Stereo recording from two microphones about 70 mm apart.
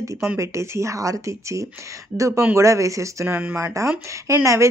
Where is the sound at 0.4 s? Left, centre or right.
Right.